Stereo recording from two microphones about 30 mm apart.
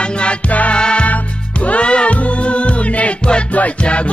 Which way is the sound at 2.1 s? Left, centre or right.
Left.